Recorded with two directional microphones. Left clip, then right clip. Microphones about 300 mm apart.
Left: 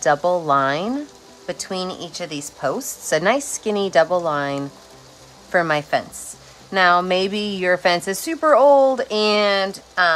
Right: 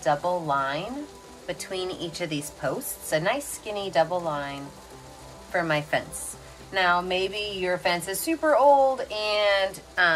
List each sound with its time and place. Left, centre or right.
0.5 s a woman's voice: left
5.6 s a woman's voice: centre